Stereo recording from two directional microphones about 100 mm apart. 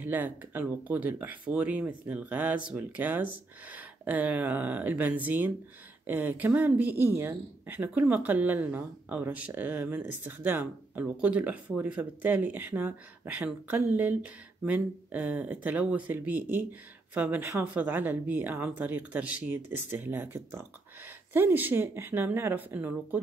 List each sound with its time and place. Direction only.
0.0 s speech: 20° right (ahead or behind)